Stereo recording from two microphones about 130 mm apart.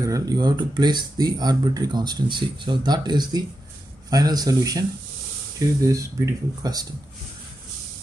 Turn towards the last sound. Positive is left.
turn(degrees=-30)  # may be behind; listen again after turning